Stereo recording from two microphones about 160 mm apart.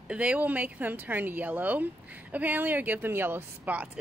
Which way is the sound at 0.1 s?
10° right (ahead or behind).